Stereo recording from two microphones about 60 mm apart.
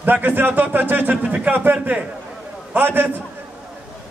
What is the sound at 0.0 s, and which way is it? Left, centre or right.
A man's voice, right.